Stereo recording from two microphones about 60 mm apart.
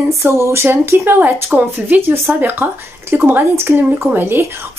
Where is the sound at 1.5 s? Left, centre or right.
Right.